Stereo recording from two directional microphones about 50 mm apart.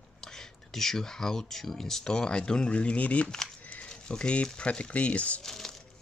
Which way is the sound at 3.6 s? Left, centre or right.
Left.